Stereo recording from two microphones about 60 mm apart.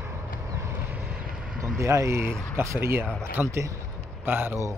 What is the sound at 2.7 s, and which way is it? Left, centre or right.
Speech, right.